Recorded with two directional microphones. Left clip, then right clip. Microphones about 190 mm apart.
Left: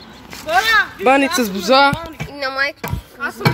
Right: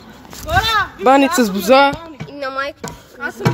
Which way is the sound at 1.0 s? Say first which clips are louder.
Right 2 dB; 25° right (ahead or behind).